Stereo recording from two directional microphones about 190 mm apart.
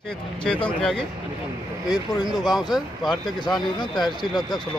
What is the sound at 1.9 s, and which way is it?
Speech, 20° left (ahead or behind).